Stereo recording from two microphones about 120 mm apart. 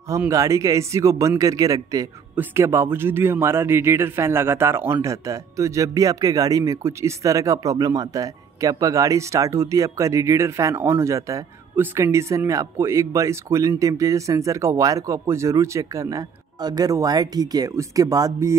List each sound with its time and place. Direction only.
0.3 s a man's voice: 25° right (ahead or behind)